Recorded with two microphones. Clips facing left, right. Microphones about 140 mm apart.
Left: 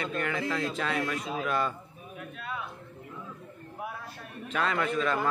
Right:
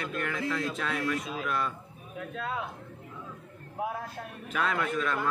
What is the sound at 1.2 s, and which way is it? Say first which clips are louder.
Speech: left 2 dB; 25° left (ahead or behind).